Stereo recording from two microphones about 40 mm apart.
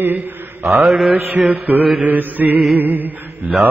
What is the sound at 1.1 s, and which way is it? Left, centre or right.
Mantra, right.